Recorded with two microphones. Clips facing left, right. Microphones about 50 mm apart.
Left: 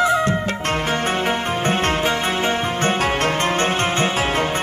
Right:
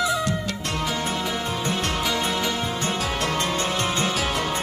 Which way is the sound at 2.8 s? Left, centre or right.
Left.